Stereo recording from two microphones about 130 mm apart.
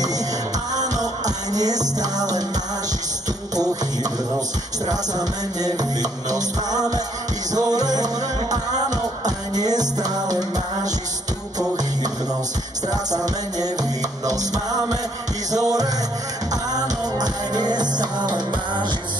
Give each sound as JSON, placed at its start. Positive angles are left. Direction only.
{"t": 1.2, "sound": "music", "side_deg": -30}
{"t": 4.8, "sound": "music", "side_deg": -30}
{"t": 12.8, "sound": "music", "side_deg": -30}